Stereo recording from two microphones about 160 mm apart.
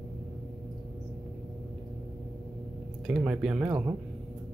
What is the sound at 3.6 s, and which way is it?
Speech, 20° right (ahead or behind).